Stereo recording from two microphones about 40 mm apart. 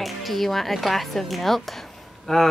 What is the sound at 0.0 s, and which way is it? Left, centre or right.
A woman's voice, centre.